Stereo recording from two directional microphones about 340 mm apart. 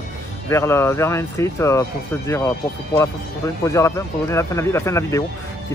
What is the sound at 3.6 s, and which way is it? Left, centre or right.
Speech, centre.